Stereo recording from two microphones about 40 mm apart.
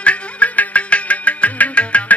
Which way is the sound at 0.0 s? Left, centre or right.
Left.